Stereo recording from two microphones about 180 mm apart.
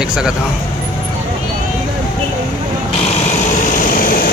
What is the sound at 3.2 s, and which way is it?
Vehicle, 40° left (ahead or behind).